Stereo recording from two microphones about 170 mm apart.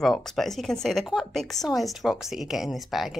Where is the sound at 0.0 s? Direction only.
Centre (ahead or behind).